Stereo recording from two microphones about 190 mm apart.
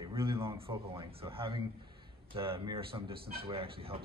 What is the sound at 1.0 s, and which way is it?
Speech, 30° right (ahead or behind).